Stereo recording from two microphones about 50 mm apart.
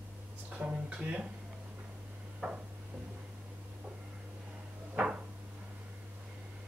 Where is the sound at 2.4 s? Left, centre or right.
Right.